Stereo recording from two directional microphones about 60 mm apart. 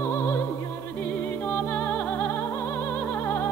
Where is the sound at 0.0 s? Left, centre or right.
Left.